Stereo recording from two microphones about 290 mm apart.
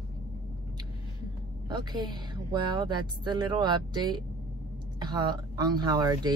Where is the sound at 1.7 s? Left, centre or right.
Centre.